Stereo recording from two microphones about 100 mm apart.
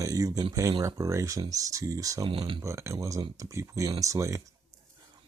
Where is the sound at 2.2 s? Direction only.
60° right (ahead or behind).